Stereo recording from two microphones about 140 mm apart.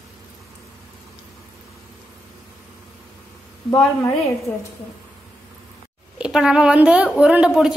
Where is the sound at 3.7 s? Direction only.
15° left (ahead or behind).